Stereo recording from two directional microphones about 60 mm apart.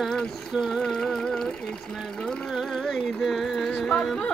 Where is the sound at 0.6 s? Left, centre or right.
Centre.